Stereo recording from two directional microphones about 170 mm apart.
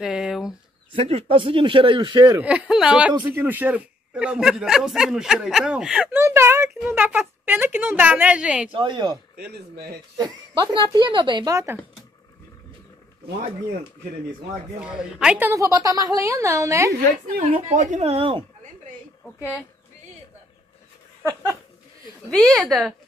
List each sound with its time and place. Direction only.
0.0 s speech: 5° right (ahead or behind)
0.9 s speech: 35° right (ahead or behind)
2.4 s a woman's voice: 5° right (ahead or behind)
8.7 s speech: 25° right (ahead or behind)
14.8 s a woman's voice: 5° right (ahead or behind)
17.4 s a woman's voice: 55° right (ahead or behind)
17.7 s speech: 45° right (ahead or behind)
21.2 s dog: 15° right (ahead or behind)
22.3 s speech: centre (ahead or behind)